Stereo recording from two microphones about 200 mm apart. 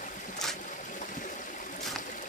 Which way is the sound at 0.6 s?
40° left (ahead or behind).